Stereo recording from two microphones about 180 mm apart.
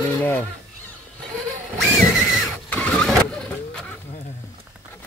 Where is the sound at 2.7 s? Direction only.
5° left (ahead or behind).